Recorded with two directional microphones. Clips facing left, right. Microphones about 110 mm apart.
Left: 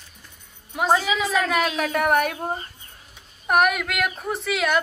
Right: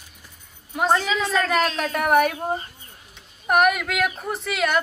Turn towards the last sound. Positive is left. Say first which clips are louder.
# even
turn(degrees=0)  # may be behind; listen again after turning